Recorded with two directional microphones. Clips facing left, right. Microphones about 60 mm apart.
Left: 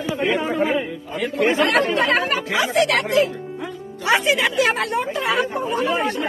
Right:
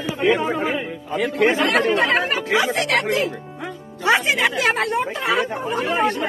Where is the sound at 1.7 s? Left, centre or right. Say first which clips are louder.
Even; centre.